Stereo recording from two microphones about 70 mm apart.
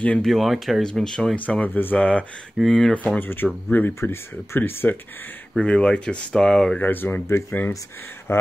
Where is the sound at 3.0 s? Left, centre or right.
Left.